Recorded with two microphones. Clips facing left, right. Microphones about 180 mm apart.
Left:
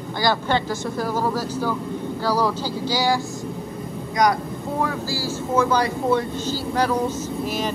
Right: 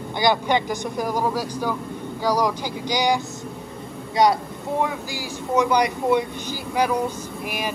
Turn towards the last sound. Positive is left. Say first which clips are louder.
# left 4 dB
turn(degrees=-10)  # may be behind; listen again after turning